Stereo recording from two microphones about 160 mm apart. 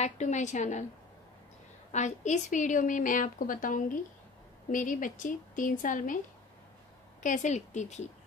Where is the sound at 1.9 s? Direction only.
50° left (ahead or behind).